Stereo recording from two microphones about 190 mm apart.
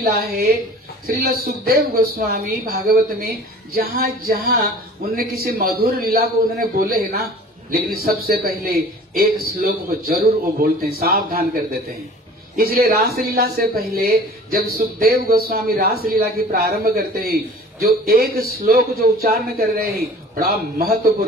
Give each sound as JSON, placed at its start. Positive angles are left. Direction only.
{"t": 0.0, "sound": "a man's voice", "side_deg": -55}
{"t": 12.5, "sound": "a man's voice", "side_deg": -50}